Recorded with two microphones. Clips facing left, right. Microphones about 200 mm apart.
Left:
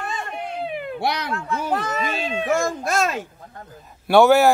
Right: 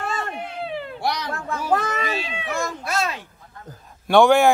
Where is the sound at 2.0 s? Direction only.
50° left (ahead or behind).